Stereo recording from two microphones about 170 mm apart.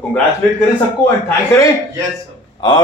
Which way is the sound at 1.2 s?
15° left (ahead or behind).